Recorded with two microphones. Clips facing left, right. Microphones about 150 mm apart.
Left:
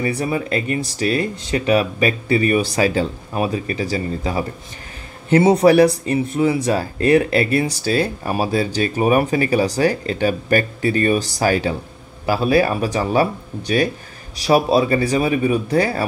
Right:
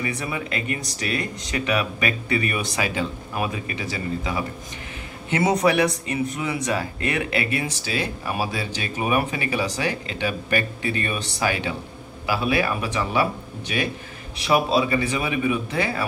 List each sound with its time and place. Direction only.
0.0 s speech: 35° left (ahead or behind)